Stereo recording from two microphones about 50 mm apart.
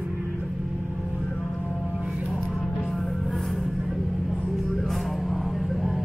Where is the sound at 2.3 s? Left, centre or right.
Centre.